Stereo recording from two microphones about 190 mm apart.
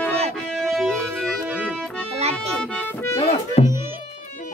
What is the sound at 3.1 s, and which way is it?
Music, 30° left (ahead or behind).